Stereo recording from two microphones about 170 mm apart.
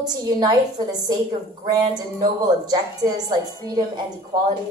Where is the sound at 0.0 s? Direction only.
25° right (ahead or behind).